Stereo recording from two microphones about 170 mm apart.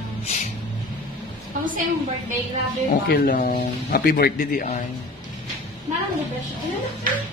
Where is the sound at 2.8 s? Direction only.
60° left (ahead or behind).